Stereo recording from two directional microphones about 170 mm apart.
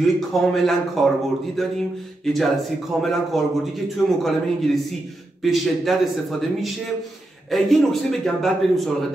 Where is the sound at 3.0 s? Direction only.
Centre (ahead or behind).